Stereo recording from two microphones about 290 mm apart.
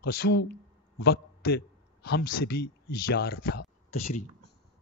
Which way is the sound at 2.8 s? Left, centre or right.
Left.